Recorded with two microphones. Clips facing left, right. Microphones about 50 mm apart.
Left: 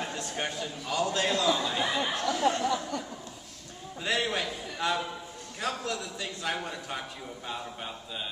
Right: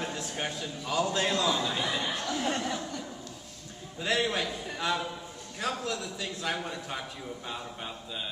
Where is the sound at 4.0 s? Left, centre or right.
Centre.